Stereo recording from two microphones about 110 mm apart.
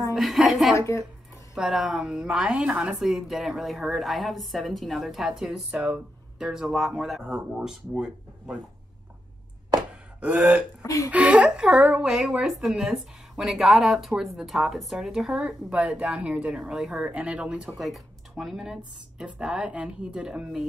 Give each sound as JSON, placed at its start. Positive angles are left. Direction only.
{"t": 0.1, "sound": "a woman's voice", "side_deg": 0}
{"t": 0.7, "sound": "speech", "side_deg": 25}
{"t": 1.5, "sound": "a woman's voice", "side_deg": 0}
{"t": 9.8, "sound": "a sound", "side_deg": -15}
{"t": 10.8, "sound": "speech", "side_deg": 30}
{"t": 11.1, "sound": "a woman's voice", "side_deg": -10}